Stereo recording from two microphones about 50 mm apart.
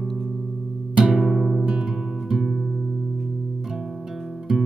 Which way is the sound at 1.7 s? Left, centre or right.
Right.